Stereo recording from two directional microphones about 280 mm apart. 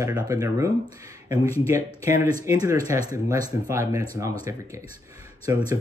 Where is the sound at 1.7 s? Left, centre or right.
Centre.